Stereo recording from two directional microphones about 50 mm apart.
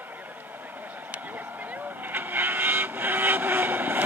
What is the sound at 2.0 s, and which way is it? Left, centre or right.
Vehicle, right.